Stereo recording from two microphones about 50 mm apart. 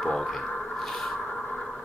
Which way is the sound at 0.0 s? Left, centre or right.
Centre.